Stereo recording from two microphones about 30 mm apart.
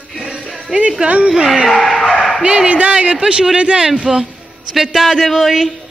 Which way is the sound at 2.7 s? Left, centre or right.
Right.